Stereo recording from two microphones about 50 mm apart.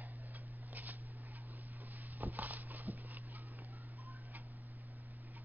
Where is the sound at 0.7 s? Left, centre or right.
Right.